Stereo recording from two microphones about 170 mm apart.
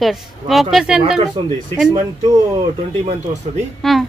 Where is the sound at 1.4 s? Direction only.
30° right (ahead or behind).